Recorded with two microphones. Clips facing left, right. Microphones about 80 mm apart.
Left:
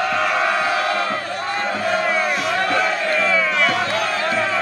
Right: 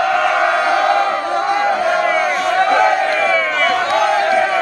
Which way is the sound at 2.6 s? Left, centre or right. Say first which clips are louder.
Right 9 dB; centre.